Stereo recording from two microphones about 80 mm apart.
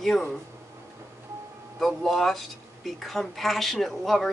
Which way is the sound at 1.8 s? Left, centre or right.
Centre.